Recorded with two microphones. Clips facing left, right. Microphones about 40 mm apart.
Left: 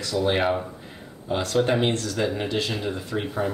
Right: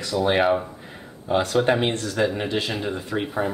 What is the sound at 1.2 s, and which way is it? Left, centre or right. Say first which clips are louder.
Speech: right 3 dB; centre.